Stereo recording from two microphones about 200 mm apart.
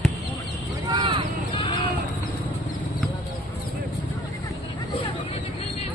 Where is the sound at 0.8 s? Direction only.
25° right (ahead or behind).